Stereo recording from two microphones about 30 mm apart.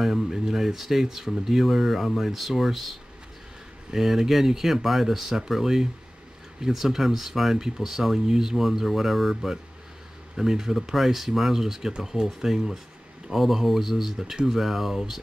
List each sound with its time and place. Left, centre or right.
0.0 s speech: centre
6.9 s speech: centre
7.5 s speech: right
14.5 s speech: centre